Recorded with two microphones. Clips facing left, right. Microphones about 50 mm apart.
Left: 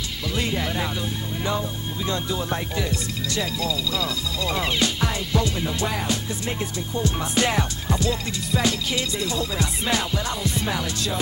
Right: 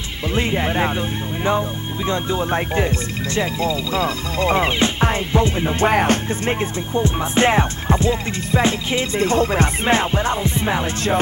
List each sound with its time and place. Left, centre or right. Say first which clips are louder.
0.3 s speech: right 6 dB; right
2.0 s speech: right 6 dB; right